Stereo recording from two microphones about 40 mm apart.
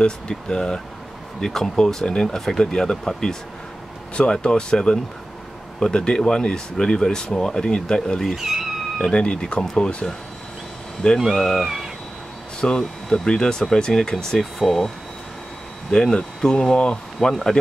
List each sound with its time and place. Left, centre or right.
0.0 s speech: centre
8.4 s speech: centre
8.9 s speech: centre
11.4 s speech: centre
12.5 s speech: centre
14.4 s speech: centre
15.9 s speech: left